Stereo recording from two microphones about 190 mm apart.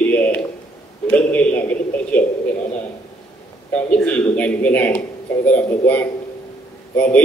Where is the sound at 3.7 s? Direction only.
5° left (ahead or behind).